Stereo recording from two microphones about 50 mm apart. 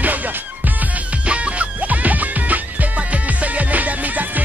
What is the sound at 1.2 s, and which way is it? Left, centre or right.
Music, right.